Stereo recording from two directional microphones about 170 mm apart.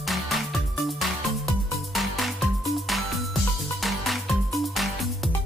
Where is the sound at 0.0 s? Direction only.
Centre (ahead or behind).